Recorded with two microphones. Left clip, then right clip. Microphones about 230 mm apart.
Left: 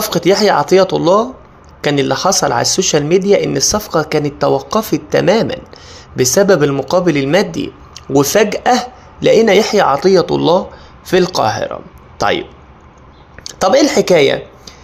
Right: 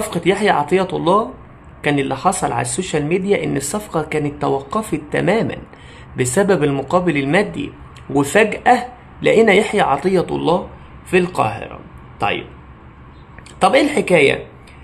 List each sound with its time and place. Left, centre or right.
0.1 s speech: centre
13.6 s speech: centre